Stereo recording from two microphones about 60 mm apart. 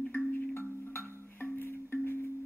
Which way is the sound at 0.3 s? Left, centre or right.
Left.